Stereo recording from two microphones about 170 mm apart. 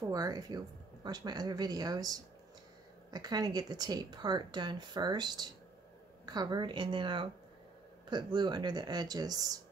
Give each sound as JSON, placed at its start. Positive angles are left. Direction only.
{"t": 0.0, "sound": "speech", "side_deg": -20}